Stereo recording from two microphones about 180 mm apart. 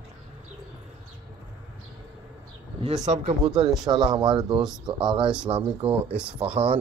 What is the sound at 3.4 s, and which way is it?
Speech, 5° right (ahead or behind).